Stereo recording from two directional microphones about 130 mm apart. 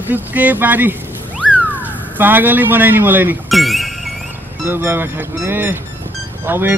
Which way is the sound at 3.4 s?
Centre (ahead or behind).